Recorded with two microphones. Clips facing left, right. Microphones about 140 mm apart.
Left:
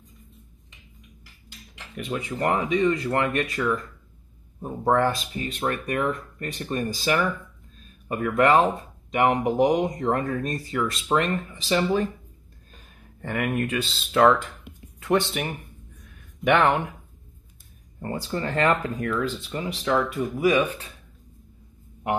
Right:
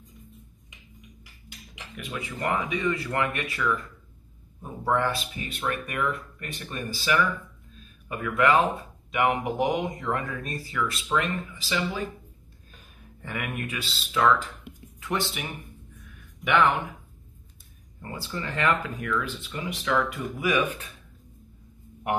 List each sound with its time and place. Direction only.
2.0 s speech: 40° left (ahead or behind)
13.2 s speech: 50° left (ahead or behind)
18.0 s speech: 40° left (ahead or behind)